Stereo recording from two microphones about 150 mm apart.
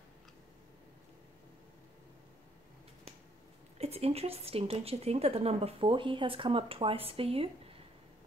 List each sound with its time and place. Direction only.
3.7 s a woman's voice: 40° right (ahead or behind)